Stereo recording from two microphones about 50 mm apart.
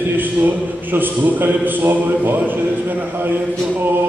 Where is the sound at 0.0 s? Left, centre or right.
Right.